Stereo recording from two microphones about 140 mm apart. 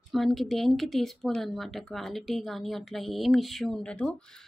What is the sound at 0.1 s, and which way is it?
A woman's voice, centre (ahead or behind).